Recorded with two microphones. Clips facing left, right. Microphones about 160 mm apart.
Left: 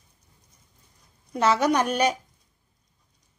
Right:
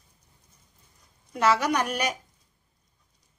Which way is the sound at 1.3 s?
25° left (ahead or behind).